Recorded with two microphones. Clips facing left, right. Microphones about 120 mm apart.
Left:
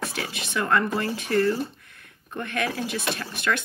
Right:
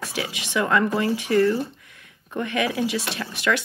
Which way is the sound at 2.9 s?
75° right (ahead or behind).